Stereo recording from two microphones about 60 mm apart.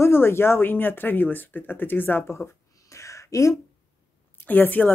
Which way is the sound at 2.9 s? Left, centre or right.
Left.